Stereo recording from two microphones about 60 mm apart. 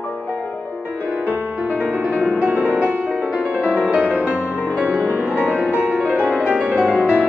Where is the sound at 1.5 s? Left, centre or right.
Right.